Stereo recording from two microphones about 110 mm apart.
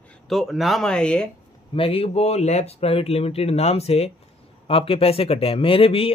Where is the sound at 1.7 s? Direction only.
60° left (ahead or behind).